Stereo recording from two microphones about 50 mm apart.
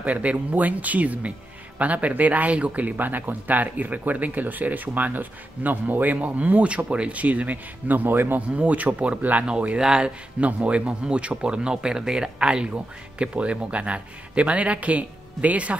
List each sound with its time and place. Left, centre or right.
0.0 s speech: right
8.4 s speech: right